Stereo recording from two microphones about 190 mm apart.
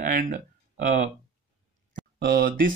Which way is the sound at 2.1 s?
55° right (ahead or behind).